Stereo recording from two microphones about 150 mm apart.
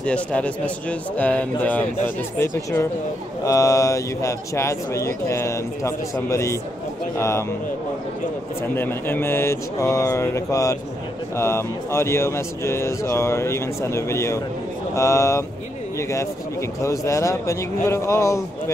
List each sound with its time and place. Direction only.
0.0 s speech: 10° left (ahead or behind)
8.7 s speech: 15° left (ahead or behind)